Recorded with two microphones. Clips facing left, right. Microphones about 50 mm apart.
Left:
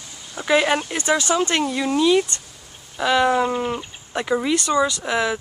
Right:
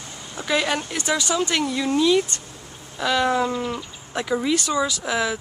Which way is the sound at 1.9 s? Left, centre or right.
Centre.